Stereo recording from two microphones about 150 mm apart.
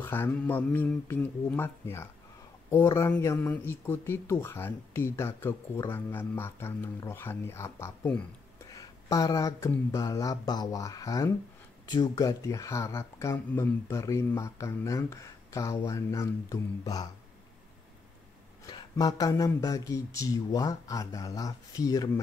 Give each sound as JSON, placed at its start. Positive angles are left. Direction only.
{"t": 0.0, "sound": "speech", "side_deg": 15}
{"t": 8.7, "sound": "a sound", "side_deg": 25}
{"t": 9.8, "sound": "speech", "side_deg": 20}
{"t": 18.7, "sound": "speech", "side_deg": 25}